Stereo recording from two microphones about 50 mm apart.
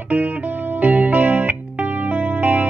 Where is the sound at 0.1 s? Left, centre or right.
Right.